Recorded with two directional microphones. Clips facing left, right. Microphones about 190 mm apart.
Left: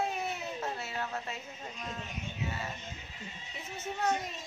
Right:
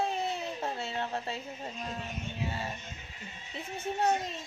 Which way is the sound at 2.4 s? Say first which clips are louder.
Right 2 dB; 30° right (ahead or behind).